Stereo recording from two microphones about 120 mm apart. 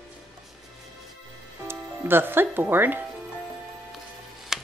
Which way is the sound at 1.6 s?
20° right (ahead or behind).